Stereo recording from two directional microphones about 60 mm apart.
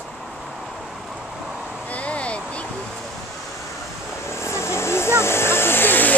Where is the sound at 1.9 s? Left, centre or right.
Left.